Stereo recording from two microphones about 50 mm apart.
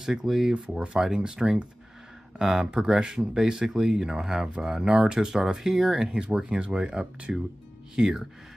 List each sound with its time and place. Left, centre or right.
0.0 s speech: centre
4.8 s speech: right
6.1 s speech: centre
7.9 s speech: centre